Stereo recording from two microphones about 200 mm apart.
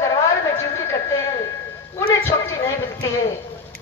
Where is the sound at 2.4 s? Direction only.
15° left (ahead or behind).